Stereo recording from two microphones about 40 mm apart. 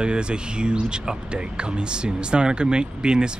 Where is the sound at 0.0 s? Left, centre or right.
Right.